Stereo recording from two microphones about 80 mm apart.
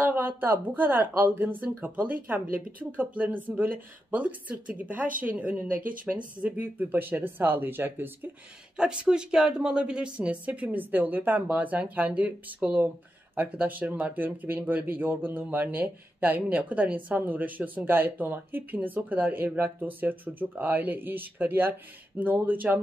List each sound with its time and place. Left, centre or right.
0.0 s speech: right
6.1 s speech: centre
6.4 s speech: centre
8.7 s speech: centre